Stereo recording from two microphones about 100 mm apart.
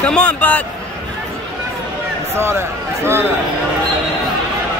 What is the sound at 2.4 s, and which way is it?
Speech, 25° right (ahead or behind).